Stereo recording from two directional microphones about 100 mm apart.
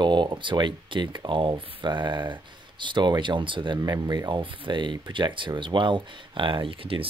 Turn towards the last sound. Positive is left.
turn(degrees=-65)  # may be behind; listen again after turning